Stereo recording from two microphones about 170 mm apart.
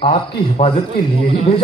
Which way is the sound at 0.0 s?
35° left (ahead or behind).